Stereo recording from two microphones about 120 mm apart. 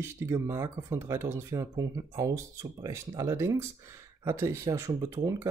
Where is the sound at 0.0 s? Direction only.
20° right (ahead or behind).